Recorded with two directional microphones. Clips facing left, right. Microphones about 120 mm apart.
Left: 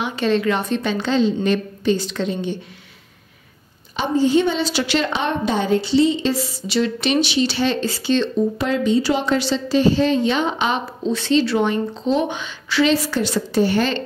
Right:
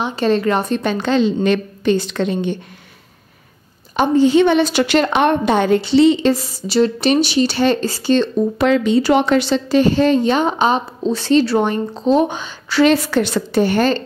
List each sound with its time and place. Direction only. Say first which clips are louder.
0.0 s a woman's voice: right 3 dB; 40° right (ahead or behind); by 2.5 s 60° right (ahead or behind)
3.9 s a woman's voice: right 5 dB; 50° right (ahead or behind)
4.3 s a woman's voice: right 5 dB; 80° right
6.3 s a woman's voice: right 4 dB; 40° right (ahead or behind)
8.5 s a woman's voice: right 8 dB; 80° right; by 12.9 s 40° right (ahead or behind)
12.9 s a woman's voice: right 3 dB; 60° right (ahead or behind)